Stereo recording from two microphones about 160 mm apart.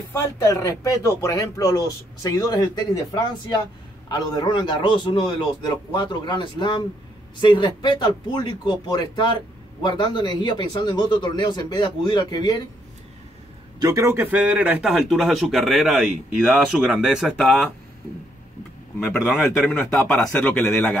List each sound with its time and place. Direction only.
0.1 s speech: 20° left (ahead or behind)
13.7 s a man's voice: 20° right (ahead or behind); by 17.6 s centre (ahead or behind)
19.0 s a man's voice: 10° left (ahead or behind)